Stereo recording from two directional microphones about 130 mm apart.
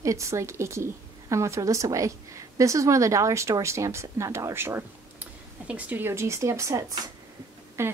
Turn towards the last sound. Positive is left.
turn(degrees=-20)  # may be behind; listen again after turning